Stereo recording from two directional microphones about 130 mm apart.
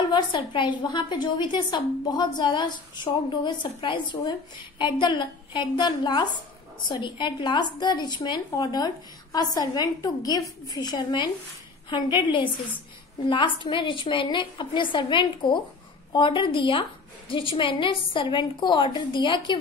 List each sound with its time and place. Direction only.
0.0 s a woman's voice: 35° left (ahead or behind)